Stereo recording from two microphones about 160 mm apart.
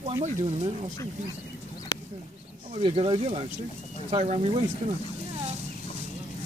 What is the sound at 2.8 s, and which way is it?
Speech, 35° right (ahead or behind).